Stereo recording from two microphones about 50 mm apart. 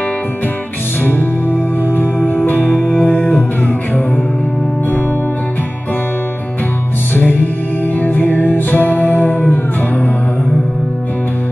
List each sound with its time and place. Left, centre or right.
2.0 s music: left
8.0 s music: left